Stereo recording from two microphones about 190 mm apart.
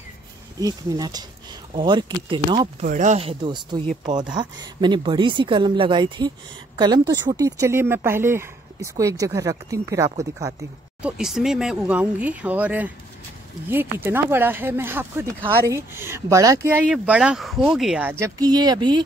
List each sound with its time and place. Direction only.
0.6 s speech: 20° right (ahead or behind)
2.8 s speech: 40° right (ahead or behind); by 10.7 s 15° right (ahead or behind)
11.0 s speech: 5° right (ahead or behind); by 19.0 s 25° right (ahead or behind)